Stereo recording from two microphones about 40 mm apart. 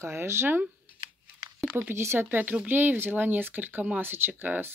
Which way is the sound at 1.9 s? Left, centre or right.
Right.